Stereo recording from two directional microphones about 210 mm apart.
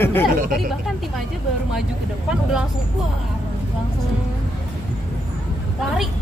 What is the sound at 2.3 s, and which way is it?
Speech, 5° right (ahead or behind).